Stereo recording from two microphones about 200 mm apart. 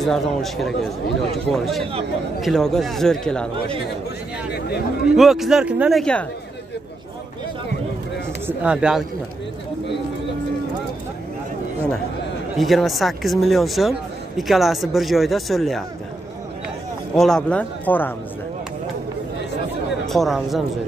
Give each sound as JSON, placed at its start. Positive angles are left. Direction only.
{"t": 0.0, "sound": "speech", "side_deg": 0}
{"t": 4.6, "sound": "speech", "side_deg": 55}
{"t": 5.0, "sound": "speech", "side_deg": 0}
{"t": 8.5, "sound": "speech", "side_deg": -5}
{"t": 12.5, "sound": "speech", "side_deg": 0}
{"t": 17.2, "sound": "speech", "side_deg": 5}
{"t": 20.1, "sound": "speech", "side_deg": 0}